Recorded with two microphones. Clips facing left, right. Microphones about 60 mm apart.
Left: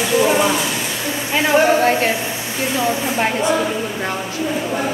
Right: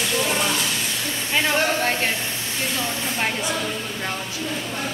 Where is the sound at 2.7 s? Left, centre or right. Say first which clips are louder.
Left 10 dB; centre.